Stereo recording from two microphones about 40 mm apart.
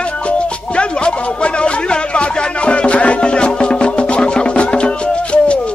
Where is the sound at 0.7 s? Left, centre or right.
Left.